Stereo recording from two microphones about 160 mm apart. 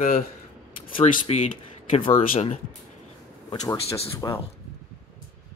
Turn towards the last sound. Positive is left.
turn(degrees=25)  # may be behind; listen again after turning